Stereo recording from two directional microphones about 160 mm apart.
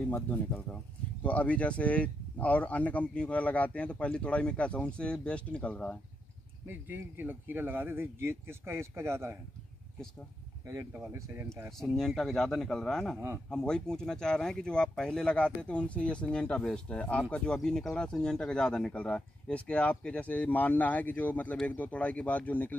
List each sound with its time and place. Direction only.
0.1 s speech: 10° left (ahead or behind)
6.6 s speech: 10° right (ahead or behind)
10.7 s speech: 15° right (ahead or behind)
11.8 s a man's voice: centre (ahead or behind)